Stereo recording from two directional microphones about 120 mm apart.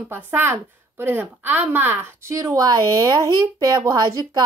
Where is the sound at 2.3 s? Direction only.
25° right (ahead or behind).